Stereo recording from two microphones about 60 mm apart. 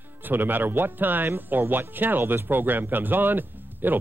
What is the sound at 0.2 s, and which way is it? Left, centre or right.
Speech, right.